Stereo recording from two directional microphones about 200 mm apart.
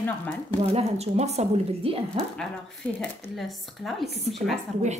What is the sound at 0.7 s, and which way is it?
A woman's voice, 30° right (ahead or behind).